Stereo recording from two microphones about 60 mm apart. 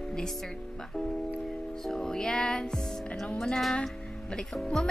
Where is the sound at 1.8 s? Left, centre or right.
Centre.